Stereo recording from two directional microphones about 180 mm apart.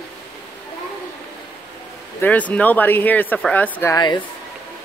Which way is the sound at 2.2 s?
10° left (ahead or behind).